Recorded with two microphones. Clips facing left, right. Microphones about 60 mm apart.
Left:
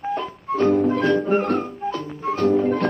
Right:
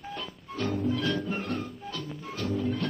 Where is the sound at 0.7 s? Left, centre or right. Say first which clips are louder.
Left 9 dB; left.